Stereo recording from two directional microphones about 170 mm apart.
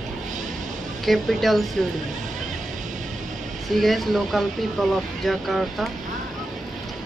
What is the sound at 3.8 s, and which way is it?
Speech, centre (ahead or behind).